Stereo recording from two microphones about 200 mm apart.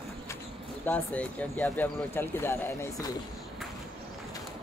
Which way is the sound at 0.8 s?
10° left (ahead or behind).